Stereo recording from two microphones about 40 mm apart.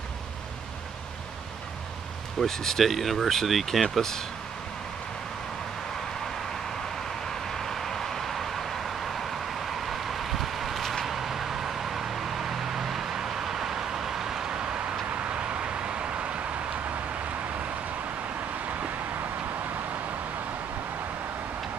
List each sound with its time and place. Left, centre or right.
2.4 s speech: centre
2.8 s speech: centre
7.4 s vehicle: centre; by 16.3 s right